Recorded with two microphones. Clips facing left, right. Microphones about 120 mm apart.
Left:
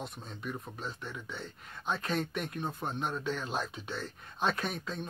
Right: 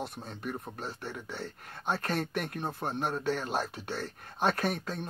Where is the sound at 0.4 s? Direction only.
55° right (ahead or behind).